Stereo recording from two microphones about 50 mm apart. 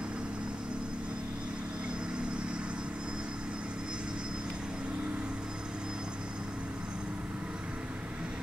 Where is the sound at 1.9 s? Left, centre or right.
Centre.